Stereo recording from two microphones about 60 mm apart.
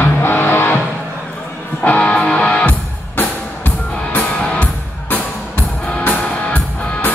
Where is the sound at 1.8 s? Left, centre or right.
Left.